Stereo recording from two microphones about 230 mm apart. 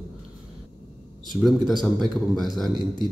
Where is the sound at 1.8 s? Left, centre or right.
Centre.